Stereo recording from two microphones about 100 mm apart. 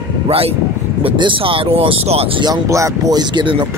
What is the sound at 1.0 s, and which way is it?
Speech, 60° right (ahead or behind).